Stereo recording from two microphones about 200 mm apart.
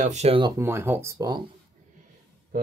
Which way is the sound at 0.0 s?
35° right (ahead or behind).